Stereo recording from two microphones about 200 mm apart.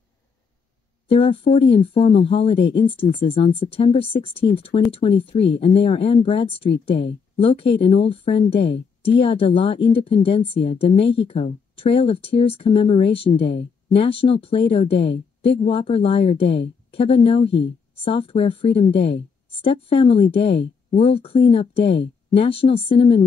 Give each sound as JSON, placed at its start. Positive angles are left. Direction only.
{"t": 1.0, "sound": "speech", "side_deg": 25}
{"t": 8.5, "sound": "speech", "side_deg": 60}
{"t": 9.0, "sound": "speech", "side_deg": 25}
{"t": 13.4, "sound": "speech", "side_deg": 60}
{"t": 13.8, "sound": "speech", "side_deg": 25}
{"t": 15.0, "sound": "a woman's voice", "side_deg": 60}
{"t": 15.6, "sound": "speech", "side_deg": 25}
{"t": 18.9, "sound": "speech", "side_deg": 60}
{"t": 19.6, "sound": "speech", "side_deg": 25}
{"t": 21.8, "sound": "speech", "side_deg": 60}
{"t": 22.3, "sound": "speech", "side_deg": 25}